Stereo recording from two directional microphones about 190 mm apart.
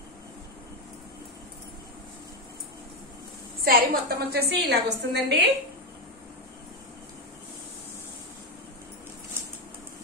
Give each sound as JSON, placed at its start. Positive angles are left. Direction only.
{"t": 3.6, "sound": "a woman's voice", "side_deg": -50}